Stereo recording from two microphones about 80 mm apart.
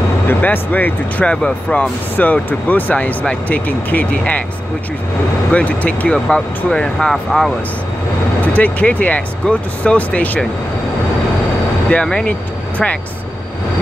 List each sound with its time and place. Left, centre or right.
0.3 s speech: left
5.5 s speech: centre
8.5 s speech: centre
11.9 s speech: centre